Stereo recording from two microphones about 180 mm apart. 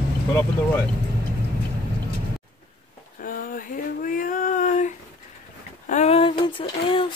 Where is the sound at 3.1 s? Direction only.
50° left (ahead or behind).